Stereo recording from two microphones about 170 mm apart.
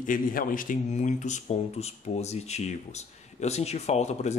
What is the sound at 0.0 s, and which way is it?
Speech, 55° left (ahead or behind).